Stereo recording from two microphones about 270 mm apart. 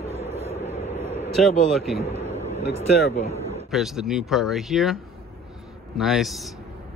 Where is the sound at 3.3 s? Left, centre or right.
Right.